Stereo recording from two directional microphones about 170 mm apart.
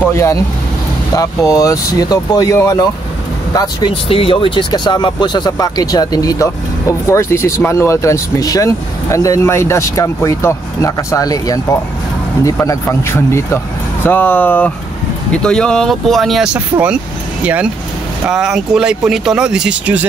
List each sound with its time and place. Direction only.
0.0 s speech: 15° left (ahead or behind)
3.5 s speech: 30° left (ahead or behind); by 16.6 s centre (ahead or behind)
18.2 s speech: 5° right (ahead or behind)